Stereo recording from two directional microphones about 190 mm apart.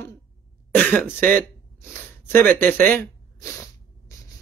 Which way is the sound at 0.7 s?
10° left (ahead or behind).